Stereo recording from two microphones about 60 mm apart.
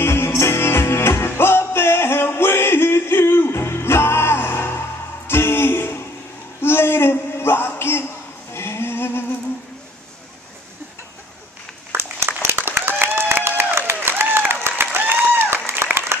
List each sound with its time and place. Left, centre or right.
0.0 s music: left
6.6 s a sound: left
11.9 s applause: right